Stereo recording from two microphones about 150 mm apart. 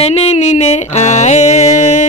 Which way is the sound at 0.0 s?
45° left (ahead or behind).